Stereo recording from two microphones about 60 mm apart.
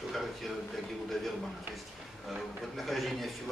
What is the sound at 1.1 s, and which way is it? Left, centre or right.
Speech, centre.